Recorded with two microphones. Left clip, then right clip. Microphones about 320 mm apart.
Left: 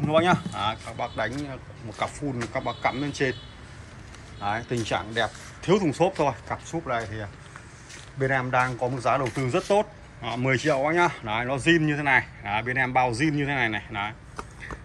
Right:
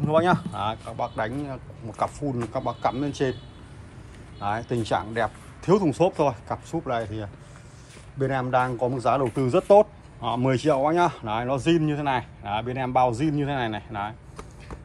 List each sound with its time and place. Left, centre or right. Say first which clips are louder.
0.0 s speech: even; centre
4.4 s speech: right 1 dB; centre
13.2 s speech: left 1 dB; right
13.5 s speech: left 2 dB; centre